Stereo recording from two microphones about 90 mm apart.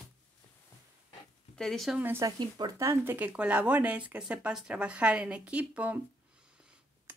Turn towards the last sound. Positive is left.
turn(degrees=-15)  # may be behind; listen again after turning